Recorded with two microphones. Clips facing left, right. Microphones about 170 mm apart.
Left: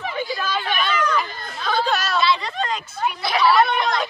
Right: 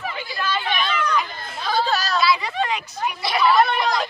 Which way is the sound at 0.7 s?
5° left (ahead or behind).